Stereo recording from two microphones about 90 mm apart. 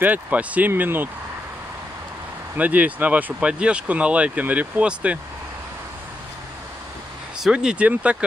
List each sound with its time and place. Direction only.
0.0 s speech: 15° right (ahead or behind)
2.5 s speech: 15° right (ahead or behind)
7.3 s speech: 5° right (ahead or behind)